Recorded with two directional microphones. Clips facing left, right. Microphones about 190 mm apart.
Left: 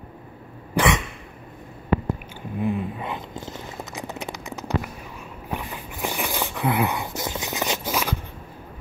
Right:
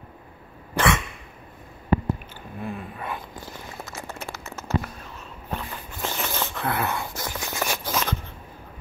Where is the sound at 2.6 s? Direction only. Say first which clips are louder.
Left 7 dB; 15° left (ahead or behind).